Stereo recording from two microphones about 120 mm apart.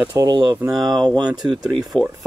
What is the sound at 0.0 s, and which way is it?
Speech, 25° right (ahead or behind).